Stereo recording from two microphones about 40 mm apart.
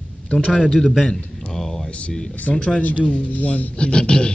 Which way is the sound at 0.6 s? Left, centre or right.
Centre.